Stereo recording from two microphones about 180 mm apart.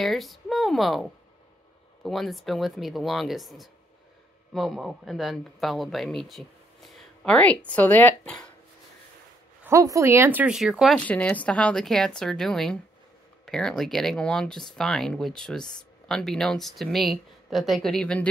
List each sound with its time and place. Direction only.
0.0 s speech: centre (ahead or behind)
9.7 s speech: 15° right (ahead or behind); by 18.2 s 5° left (ahead or behind)